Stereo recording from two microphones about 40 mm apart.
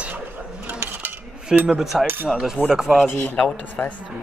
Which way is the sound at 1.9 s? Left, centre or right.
Centre.